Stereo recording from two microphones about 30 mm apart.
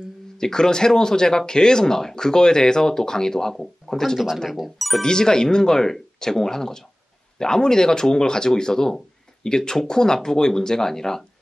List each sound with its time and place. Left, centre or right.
0.4 s speech: left
4.5 s speech: centre
5.0 s speech: left